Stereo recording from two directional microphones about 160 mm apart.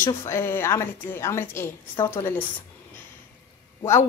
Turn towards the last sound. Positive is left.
turn(degrees=15)  # may be behind; listen again after turning